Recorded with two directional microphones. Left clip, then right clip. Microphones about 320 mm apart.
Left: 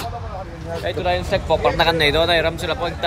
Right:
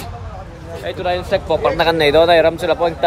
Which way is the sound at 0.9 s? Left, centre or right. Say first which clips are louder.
Right 2 dB; centre.